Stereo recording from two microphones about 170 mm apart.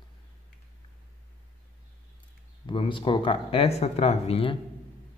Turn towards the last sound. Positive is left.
turn(degrees=35)  # may be behind; listen again after turning